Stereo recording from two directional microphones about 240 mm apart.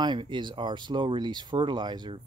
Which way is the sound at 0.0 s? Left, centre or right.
Centre.